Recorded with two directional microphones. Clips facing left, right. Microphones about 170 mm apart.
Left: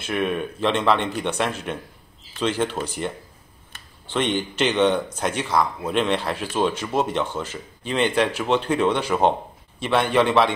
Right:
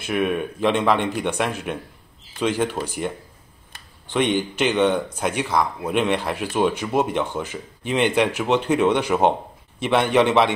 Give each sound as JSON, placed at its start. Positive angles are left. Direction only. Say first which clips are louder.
{"t": 0.0, "sound": "speech", "louder": "right 2 dB", "side_deg": -10}
{"t": 4.1, "sound": "speech", "louder": "right 3 dB", "side_deg": -10}